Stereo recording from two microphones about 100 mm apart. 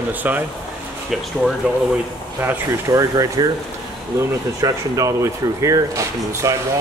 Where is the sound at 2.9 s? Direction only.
35° right (ahead or behind).